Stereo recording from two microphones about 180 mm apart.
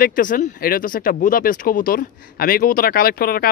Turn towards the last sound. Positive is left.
turn(degrees=55)  # may be behind; listen again after turning